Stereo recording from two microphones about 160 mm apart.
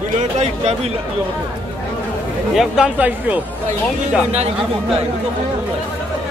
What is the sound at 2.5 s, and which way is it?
Speech, 5° right (ahead or behind).